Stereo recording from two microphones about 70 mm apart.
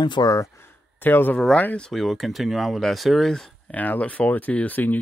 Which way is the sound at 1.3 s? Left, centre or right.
Centre.